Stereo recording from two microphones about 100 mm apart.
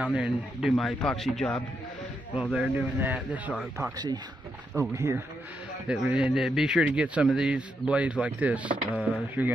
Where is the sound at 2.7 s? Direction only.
25° right (ahead or behind).